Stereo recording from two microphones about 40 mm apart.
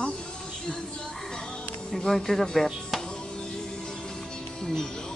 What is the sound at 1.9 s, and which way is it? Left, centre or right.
Speech, centre.